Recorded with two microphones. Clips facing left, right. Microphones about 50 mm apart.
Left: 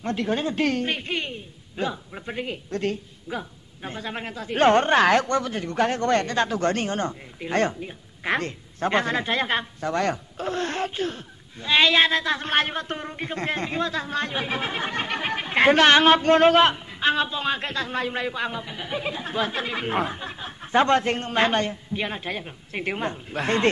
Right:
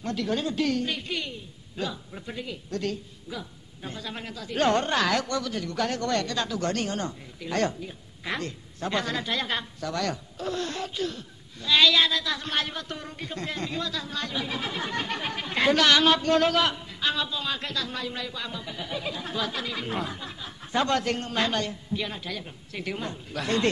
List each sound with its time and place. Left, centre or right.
0.0 s a woman's voice: left
2.3 s a woman's voice: left